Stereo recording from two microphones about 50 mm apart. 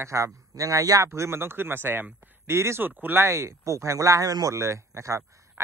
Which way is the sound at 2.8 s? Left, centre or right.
Right.